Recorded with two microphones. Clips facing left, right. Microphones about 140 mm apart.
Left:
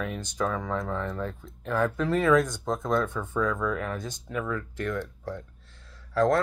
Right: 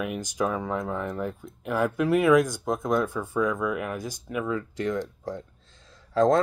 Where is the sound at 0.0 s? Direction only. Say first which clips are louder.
Right 2 dB; 10° right (ahead or behind).